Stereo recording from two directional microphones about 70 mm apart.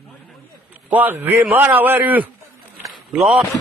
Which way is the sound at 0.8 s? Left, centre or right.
Right.